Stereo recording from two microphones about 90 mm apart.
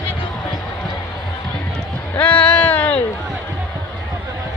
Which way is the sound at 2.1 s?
20° left (ahead or behind).